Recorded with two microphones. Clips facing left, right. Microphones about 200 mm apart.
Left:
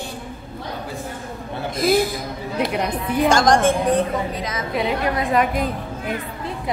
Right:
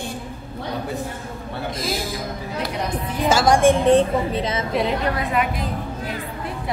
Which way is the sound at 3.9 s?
30° right (ahead or behind).